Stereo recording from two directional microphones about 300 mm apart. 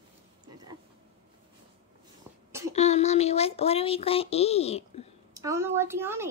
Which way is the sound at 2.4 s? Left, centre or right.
Centre.